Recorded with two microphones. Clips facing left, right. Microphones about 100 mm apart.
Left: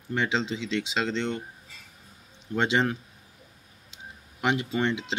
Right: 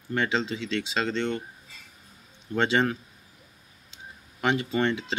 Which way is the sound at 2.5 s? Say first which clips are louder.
Right 1 dB; 10° left (ahead or behind).